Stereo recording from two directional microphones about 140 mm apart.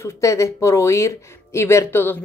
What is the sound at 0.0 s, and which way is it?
A woman's voice, 20° left (ahead or behind).